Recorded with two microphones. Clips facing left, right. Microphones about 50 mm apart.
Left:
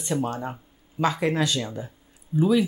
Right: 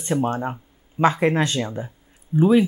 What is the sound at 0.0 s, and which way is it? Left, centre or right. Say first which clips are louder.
Speech: right 4 dB; right.